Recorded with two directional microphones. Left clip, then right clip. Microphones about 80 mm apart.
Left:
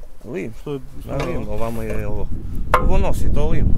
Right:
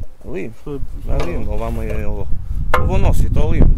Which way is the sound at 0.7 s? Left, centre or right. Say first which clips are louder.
Left 4 dB; left.